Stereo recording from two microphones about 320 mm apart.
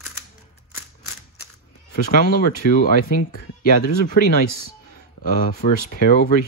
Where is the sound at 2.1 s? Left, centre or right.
Left.